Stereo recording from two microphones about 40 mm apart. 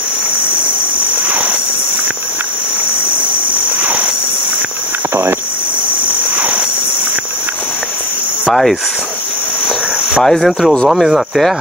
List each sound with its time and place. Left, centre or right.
6.3 s cricket: right
8.5 s speech: centre
10.2 s speech: centre
11.1 s speech: centre